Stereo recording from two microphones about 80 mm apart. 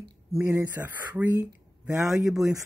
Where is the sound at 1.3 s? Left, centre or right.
Right.